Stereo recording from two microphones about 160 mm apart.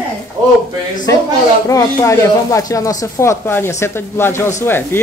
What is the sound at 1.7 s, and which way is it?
Speech, 20° left (ahead or behind).